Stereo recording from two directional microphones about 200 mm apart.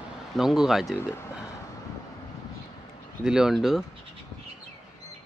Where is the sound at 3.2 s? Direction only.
5° right (ahead or behind).